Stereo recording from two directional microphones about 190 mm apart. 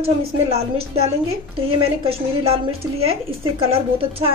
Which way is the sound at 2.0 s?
30° right (ahead or behind).